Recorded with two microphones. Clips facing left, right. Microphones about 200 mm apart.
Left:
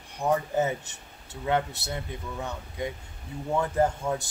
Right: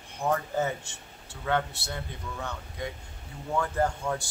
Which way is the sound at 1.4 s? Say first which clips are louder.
Left 2 dB; 20° left (ahead or behind).